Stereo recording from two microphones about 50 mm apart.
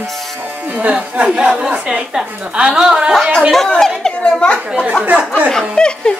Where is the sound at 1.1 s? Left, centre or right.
Centre.